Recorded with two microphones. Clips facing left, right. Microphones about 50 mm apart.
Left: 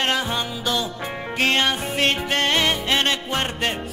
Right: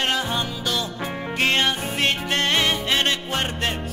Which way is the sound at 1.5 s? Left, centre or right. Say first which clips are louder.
Left 1 dB; left.